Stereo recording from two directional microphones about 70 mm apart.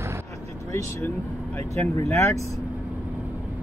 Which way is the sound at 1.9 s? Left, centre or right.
Left.